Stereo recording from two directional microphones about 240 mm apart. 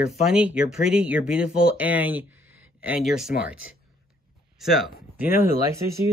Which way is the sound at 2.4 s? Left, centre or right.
Right.